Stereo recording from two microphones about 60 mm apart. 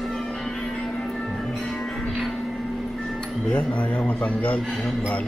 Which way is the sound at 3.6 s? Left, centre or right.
Left.